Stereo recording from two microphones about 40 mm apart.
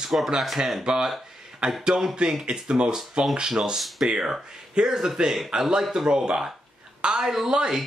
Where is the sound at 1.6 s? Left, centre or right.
Right.